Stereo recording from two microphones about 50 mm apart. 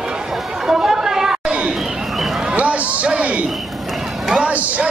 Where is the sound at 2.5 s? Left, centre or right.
Right.